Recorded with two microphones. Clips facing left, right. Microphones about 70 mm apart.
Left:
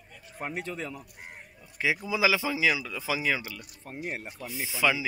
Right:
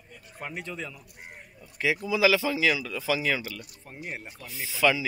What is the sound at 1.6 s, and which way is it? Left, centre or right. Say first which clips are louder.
Speech: right 1 dB; centre.